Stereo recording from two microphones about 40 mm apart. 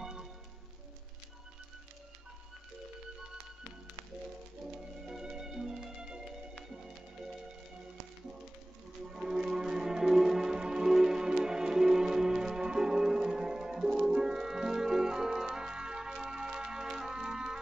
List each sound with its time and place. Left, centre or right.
0.0 s music: centre
5.0 s music: centre
9.1 s music: centre